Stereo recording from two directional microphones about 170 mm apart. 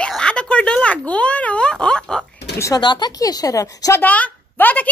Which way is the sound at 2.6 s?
25° left (ahead or behind).